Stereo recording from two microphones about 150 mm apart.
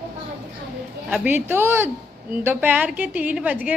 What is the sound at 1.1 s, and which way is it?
A woman's voice, 10° right (ahead or behind).